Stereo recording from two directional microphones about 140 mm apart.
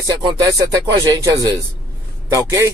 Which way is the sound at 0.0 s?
35° right (ahead or behind).